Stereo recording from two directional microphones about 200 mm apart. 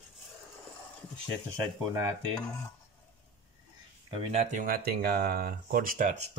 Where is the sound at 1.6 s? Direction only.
10° right (ahead or behind).